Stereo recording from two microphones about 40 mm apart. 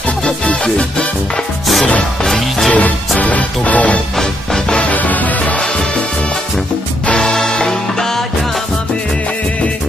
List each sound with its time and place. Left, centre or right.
0.2 s music: left
2.2 s music: centre
3.2 s music: left
7.2 s music: centre